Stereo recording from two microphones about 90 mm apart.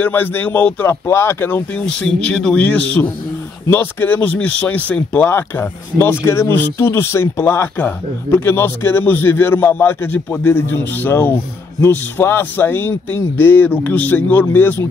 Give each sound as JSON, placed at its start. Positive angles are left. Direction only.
{"t": 0.0, "sound": "speech", "side_deg": 25}
{"t": 1.8, "sound": "speech", "side_deg": 10}